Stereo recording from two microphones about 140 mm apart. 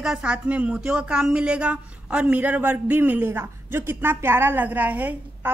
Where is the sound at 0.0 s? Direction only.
5° right (ahead or behind).